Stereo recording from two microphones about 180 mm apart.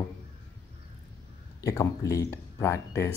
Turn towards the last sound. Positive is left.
turn(degrees=15)  # may be behind; listen again after turning